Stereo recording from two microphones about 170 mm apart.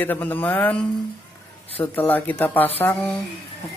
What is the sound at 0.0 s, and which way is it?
Speech, 10° left (ahead or behind).